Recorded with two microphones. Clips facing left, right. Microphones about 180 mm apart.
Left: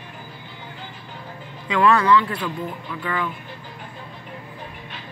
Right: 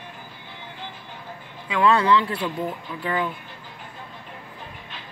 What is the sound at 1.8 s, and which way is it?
A woman's voice, 25° right (ahead or behind).